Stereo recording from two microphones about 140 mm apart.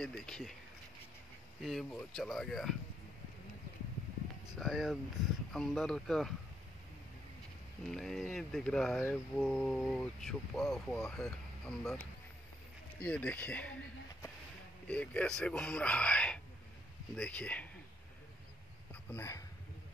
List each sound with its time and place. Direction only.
0.0 s speech: 5° left (ahead or behind)
1.6 s speech: centre (ahead or behind)
4.6 s speech: centre (ahead or behind)
7.9 s speech: 5° left (ahead or behind)
13.0 s speech: 10° left (ahead or behind)
14.9 s speech: 10° left (ahead or behind)
19.0 s speech: 20° left (ahead or behind)